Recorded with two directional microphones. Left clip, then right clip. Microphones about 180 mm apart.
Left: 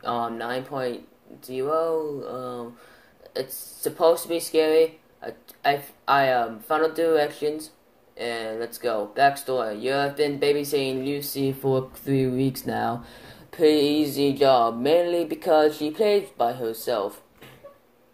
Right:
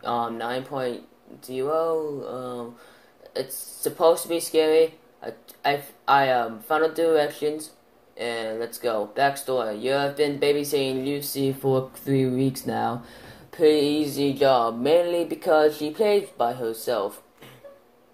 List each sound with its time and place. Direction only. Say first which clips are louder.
0.0 s speech: right 1 dB; 5° left (ahead or behind)